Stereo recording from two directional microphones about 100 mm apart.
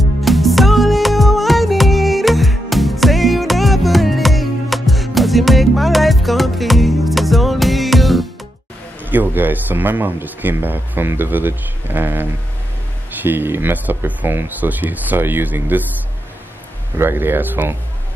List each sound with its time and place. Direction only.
0.2 s music: centre (ahead or behind)
9.1 s speech: 20° right (ahead or behind)
16.9 s speech: 25° right (ahead or behind)